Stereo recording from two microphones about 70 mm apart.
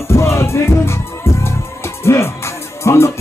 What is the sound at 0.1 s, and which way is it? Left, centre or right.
Music, left.